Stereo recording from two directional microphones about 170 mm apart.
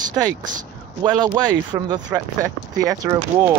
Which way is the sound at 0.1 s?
20° right (ahead or behind).